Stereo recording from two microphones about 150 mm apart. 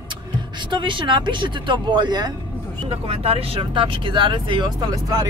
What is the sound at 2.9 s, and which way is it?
Speech, 40° right (ahead or behind).